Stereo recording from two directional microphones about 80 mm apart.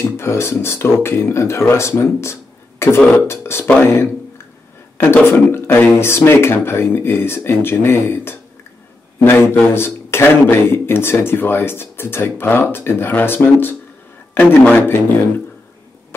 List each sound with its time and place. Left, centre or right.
0.2 s speech: left
4.9 s speech: left